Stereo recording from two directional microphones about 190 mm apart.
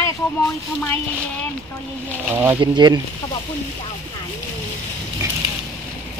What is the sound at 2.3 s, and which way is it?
Speech, 10° right (ahead or behind).